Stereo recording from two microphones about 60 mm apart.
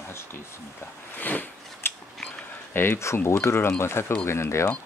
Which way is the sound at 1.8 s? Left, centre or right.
Left.